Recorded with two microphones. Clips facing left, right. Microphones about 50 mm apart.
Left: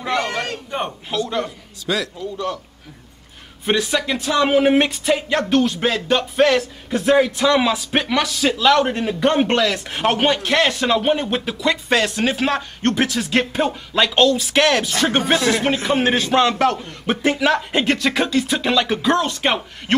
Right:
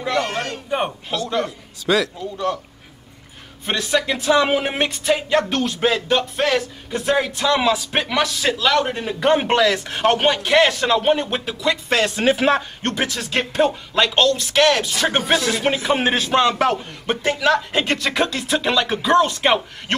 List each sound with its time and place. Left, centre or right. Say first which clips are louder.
0.0 s a sound: even; centre
0.7 s a sound: right 3 dB; centre
1.1 s speech: left 1 dB; centre
1.4 s a man's voice: right 2 dB; right
3.6 s speech: left 1 dB; centre
12.2 s a man's voice: right 3 dB; centre
12.8 s speech: left 4 dB; centre
15.7 s a man's voice: left 1 dB; centre
17.0 s speech: left 2 dB; centre